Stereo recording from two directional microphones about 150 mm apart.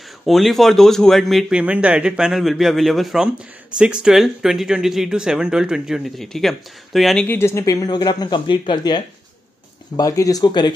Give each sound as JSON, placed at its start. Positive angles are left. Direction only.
{"t": 0.2, "sound": "speech", "side_deg": 0}
{"t": 7.2, "sound": "speech", "side_deg": 15}